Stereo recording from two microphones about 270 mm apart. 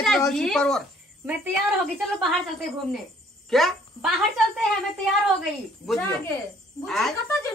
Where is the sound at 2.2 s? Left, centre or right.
Centre.